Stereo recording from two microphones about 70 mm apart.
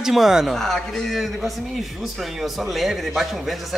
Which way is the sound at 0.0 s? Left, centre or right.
Centre.